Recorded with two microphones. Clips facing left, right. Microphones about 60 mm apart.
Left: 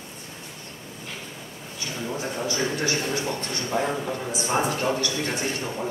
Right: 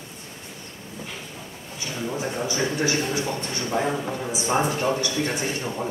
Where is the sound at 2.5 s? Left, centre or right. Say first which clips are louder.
Right 1 dB; centre.